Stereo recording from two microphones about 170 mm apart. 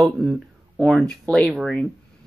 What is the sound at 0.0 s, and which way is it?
Speech, centre (ahead or behind).